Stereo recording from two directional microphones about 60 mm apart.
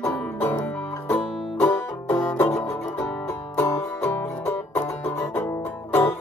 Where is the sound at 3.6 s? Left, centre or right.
Left.